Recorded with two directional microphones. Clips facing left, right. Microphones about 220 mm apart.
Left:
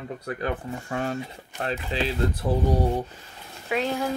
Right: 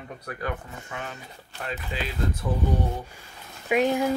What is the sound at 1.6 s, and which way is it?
Speech, 30° left (ahead or behind).